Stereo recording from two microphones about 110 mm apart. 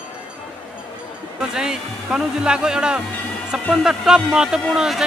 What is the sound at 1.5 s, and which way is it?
Speech, 5° right (ahead or behind).